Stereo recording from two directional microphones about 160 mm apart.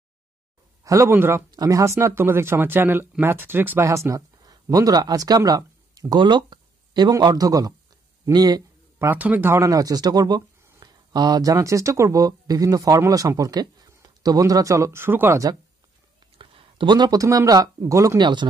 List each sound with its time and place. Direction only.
0.8 s speech: 20° right (ahead or behind)
8.9 s speech: 10° right (ahead or behind)
16.3 s speech: 30° right (ahead or behind)